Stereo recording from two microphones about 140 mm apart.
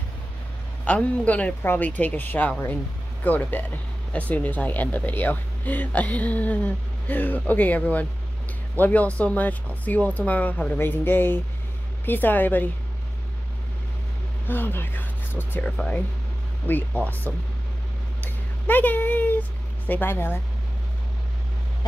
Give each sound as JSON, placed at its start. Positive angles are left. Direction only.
{"t": 0.8, "sound": "speech", "side_deg": 10}
{"t": 14.5, "sound": "speech", "side_deg": 15}
{"t": 18.2, "sound": "a sound", "side_deg": 10}
{"t": 19.9, "sound": "speech", "side_deg": 15}